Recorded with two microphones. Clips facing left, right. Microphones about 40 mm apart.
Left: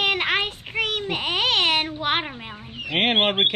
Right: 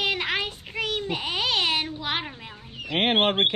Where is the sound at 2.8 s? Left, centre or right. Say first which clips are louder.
Left 2 dB; left.